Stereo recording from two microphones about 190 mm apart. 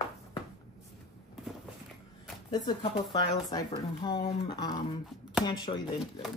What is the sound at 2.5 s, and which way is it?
Speech, 25° left (ahead or behind).